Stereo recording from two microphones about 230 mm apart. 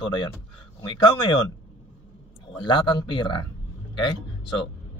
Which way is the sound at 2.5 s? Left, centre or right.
Left.